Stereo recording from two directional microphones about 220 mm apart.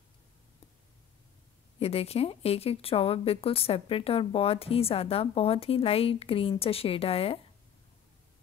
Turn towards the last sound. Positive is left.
turn(degrees=25)  # may be behind; listen again after turning